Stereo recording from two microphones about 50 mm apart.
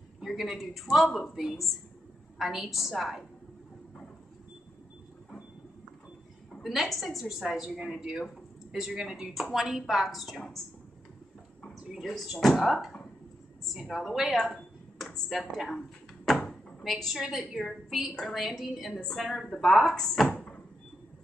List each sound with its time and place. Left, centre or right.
0.2 s speech: centre
6.5 s speech: centre
11.9 s speech: centre
14.3 s a sound: centre
15.2 s speech: centre
16.8 s speech: centre
20.3 s door: left